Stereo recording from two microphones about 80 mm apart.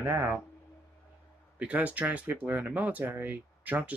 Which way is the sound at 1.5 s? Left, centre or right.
Centre.